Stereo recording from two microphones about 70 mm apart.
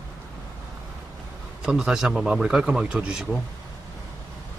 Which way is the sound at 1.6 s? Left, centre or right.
Centre.